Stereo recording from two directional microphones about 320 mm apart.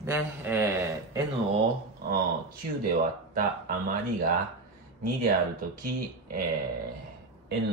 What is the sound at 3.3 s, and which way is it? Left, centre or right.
Speech, right.